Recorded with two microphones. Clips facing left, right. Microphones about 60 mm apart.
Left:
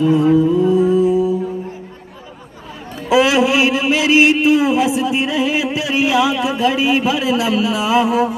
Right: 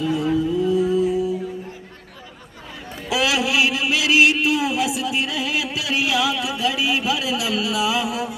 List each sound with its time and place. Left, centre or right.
0.0 s music: left
3.1 s a man's voice: left